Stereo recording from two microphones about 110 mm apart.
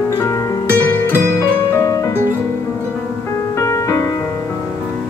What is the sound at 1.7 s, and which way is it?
Music, 25° left (ahead or behind).